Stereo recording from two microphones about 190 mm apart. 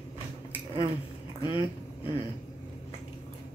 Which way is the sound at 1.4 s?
25° left (ahead or behind).